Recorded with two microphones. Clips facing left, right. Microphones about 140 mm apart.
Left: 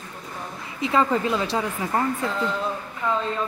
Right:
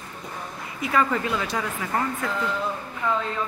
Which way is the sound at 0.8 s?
25° left (ahead or behind).